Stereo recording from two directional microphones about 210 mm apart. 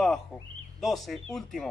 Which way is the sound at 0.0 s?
Centre (ahead or behind).